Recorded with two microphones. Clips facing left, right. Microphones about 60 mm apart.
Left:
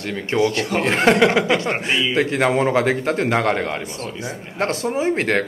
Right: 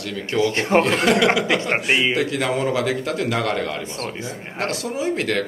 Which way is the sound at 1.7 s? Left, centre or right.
Right.